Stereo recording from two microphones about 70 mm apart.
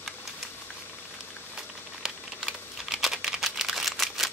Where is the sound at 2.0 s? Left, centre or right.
Centre.